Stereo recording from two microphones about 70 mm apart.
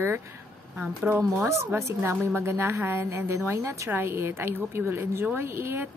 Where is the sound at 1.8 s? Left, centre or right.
Right.